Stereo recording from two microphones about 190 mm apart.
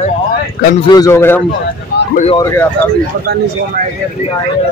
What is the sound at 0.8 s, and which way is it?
Speech, 20° left (ahead or behind).